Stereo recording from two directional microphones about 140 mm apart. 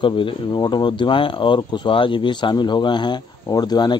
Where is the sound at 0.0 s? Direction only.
35° left (ahead or behind).